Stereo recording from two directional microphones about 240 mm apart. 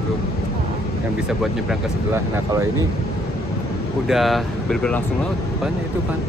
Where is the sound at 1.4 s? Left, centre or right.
Centre.